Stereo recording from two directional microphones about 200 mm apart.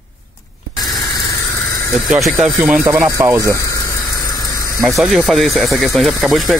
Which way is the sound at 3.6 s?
15° left (ahead or behind).